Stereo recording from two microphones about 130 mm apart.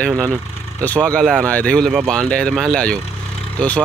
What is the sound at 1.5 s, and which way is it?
Speech, 10° left (ahead or behind).